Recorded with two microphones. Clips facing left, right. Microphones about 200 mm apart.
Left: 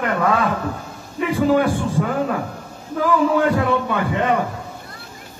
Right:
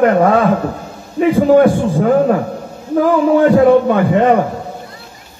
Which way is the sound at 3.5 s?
45° right (ahead or behind).